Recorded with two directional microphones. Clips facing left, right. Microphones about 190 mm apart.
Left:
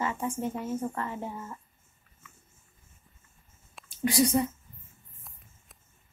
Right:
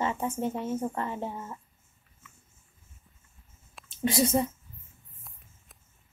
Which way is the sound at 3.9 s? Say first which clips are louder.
Left 1 dB; 25° right (ahead or behind).